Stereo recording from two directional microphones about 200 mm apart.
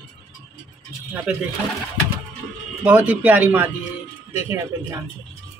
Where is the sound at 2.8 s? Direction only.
5° right (ahead or behind).